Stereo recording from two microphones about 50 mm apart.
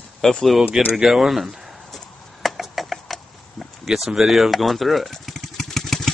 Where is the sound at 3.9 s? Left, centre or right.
Centre.